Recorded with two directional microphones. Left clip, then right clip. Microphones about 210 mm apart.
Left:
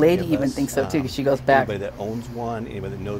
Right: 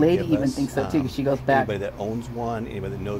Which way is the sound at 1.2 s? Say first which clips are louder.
Left 4 dB; 15° left (ahead or behind).